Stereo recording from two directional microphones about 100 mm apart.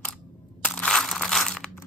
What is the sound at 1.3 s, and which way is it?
Crumpling, 5° left (ahead or behind).